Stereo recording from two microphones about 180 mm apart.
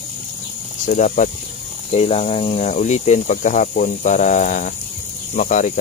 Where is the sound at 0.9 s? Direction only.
45° left (ahead or behind).